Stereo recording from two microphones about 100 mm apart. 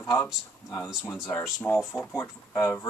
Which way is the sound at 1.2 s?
25° left (ahead or behind).